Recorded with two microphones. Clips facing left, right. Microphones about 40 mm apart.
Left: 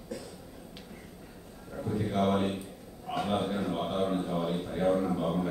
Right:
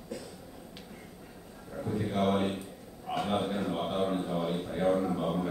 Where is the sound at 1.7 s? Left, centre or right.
Centre.